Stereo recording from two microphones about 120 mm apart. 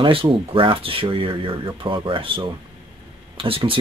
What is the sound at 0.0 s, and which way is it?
Speech, 50° right (ahead or behind).